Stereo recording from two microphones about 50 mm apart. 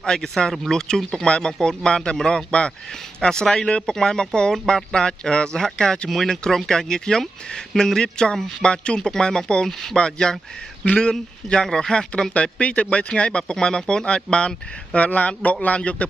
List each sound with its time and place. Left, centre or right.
0.0 s speech: centre